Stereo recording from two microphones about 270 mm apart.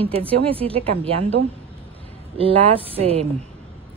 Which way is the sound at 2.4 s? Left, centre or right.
Right.